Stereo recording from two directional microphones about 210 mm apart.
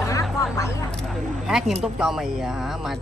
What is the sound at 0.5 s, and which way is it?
Speech, 15° left (ahead or behind).